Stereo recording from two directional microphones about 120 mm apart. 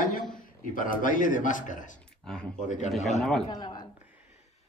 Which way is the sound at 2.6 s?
90° left.